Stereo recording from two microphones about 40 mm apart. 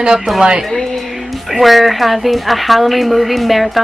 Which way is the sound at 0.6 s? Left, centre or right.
Centre.